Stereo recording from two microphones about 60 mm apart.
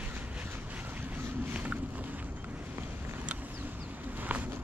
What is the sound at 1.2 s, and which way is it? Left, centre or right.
Boat, right.